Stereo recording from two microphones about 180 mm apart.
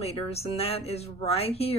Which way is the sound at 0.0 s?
35° left (ahead or behind).